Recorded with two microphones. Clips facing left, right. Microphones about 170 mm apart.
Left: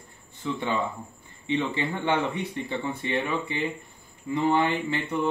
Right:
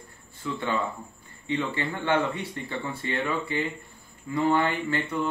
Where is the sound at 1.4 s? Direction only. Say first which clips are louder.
Left 2 dB; 20° left (ahead or behind).